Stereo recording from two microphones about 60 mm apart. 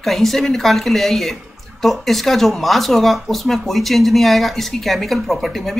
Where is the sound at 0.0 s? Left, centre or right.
Centre.